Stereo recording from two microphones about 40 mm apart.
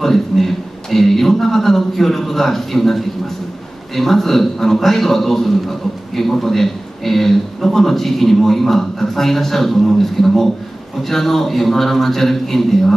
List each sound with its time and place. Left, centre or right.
0.0 s speech: centre